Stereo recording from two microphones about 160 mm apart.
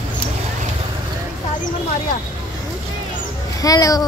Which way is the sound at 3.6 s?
20° left (ahead or behind).